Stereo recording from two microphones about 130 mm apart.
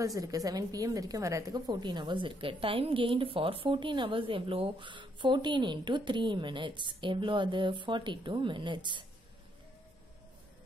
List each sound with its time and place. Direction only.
0.0 s a woman's voice: 25° right (ahead or behind)